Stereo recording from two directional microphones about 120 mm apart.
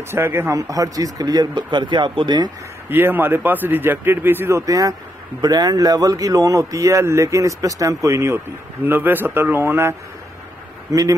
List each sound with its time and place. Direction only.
0.1 s speech: 20° right (ahead or behind); by 2.5 s 40° right (ahead or behind)
2.9 s a man's voice: 15° right (ahead or behind)